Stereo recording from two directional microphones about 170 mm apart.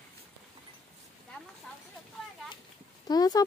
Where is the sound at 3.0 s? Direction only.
25° left (ahead or behind).